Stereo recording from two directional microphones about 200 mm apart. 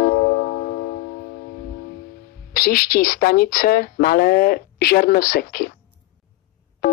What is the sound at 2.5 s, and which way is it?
Speech, 45° left (ahead or behind).